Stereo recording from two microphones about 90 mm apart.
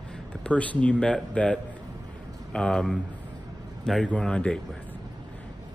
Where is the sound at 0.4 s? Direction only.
15° left (ahead or behind).